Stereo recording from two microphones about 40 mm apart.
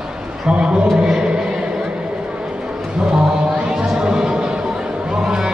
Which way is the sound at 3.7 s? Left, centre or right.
Centre.